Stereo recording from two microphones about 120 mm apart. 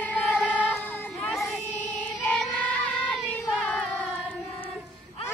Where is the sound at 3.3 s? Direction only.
10° left (ahead or behind).